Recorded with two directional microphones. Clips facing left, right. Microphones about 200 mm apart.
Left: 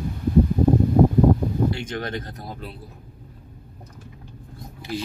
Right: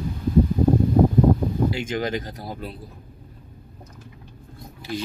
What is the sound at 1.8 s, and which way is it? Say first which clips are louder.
Speech: right 4 dB; 90° right.